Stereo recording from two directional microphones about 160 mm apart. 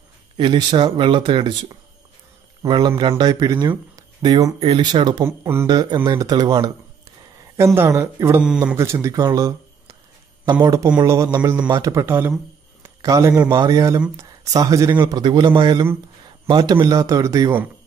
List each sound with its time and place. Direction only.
0.4 s a man's voice: 30° right (ahead or behind)
4.6 s a man's voice: 35° right (ahead or behind); by 5.7 s 15° right (ahead or behind)
5.7 s a man's voice: 25° right (ahead or behind)